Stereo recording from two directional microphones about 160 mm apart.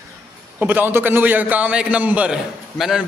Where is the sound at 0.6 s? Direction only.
10° right (ahead or behind).